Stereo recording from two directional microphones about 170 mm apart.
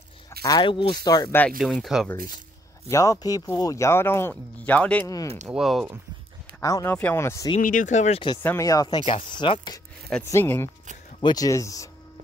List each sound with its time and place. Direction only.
0.4 s speech: 25° left (ahead or behind)
1.6 s speech: centre (ahead or behind)
2.9 s speech: 20° left (ahead or behind)
5.0 s speech: 20° left (ahead or behind)
5.5 s speech: centre (ahead or behind)
6.6 s speech: 20° left (ahead or behind)
7.6 s speech: 50° left (ahead or behind)
8.4 s speech: 15° left (ahead or behind)
10.2 s speech: 15° left (ahead or behind)
11.1 s speech: 25° left (ahead or behind)